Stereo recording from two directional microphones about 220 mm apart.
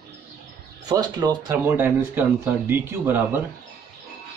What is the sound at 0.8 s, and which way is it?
Speech, 15° right (ahead or behind).